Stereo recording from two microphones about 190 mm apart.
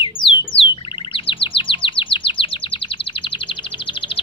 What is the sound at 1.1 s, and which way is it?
Chirp, 25° left (ahead or behind).